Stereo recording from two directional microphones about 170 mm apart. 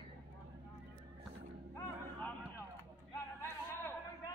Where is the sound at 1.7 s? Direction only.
15° left (ahead or behind).